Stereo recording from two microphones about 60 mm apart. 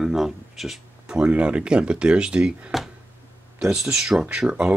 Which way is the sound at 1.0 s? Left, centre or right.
Centre.